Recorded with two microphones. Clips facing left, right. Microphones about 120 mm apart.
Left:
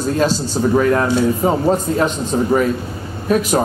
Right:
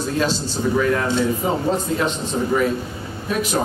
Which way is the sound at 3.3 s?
45° left (ahead or behind).